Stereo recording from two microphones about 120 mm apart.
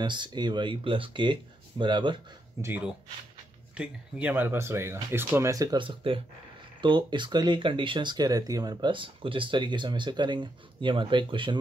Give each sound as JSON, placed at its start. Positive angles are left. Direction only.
{"t": 0.0, "sound": "speech", "side_deg": -40}
{"t": 2.6, "sound": "speech", "side_deg": -25}
{"t": 3.7, "sound": "speech", "side_deg": -10}
{"t": 5.8, "sound": "speech", "side_deg": -45}